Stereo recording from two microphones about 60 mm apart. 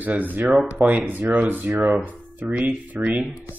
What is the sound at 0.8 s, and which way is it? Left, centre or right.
Speech, right.